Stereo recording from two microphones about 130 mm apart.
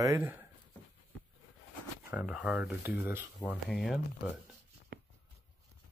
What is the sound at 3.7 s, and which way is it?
Speech, 5° left (ahead or behind).